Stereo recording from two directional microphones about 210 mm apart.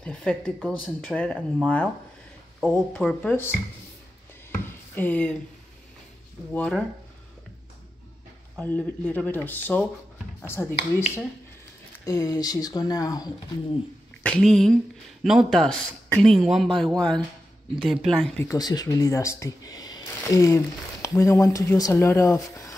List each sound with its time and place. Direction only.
0.0 s a man's voice: 5° left (ahead or behind)
4.6 s a sound: 10° left (ahead or behind)
6.5 s a man's voice: 5° left (ahead or behind)
8.5 s speech: 5° left (ahead or behind)
12.1 s speech: 15° left (ahead or behind)
14.2 s a man's voice: 5° left (ahead or behind)
18.5 s speech: 20° left (ahead or behind)